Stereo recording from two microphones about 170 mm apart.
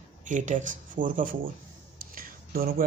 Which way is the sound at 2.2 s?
60° right (ahead or behind).